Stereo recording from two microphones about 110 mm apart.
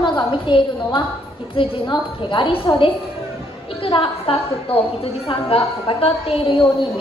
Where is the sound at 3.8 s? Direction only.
55° left (ahead or behind).